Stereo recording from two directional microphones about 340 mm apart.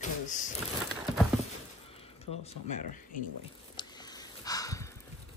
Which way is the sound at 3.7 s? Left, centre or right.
Centre.